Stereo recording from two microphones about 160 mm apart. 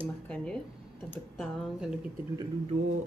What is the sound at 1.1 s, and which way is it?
Speech, 5° left (ahead or behind).